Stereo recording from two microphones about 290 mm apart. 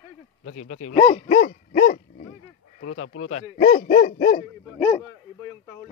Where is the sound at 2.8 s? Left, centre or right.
Left.